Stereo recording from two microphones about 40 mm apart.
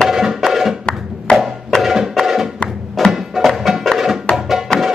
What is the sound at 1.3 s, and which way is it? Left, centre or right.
Music, left.